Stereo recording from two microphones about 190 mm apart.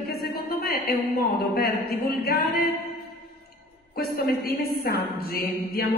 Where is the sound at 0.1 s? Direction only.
50° left (ahead or behind).